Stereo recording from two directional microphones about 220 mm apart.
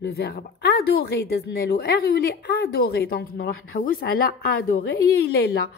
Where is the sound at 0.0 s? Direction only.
45° left (ahead or behind).